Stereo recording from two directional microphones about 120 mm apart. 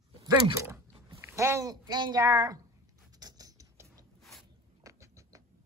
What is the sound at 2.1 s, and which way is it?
Speech, 25° right (ahead or behind).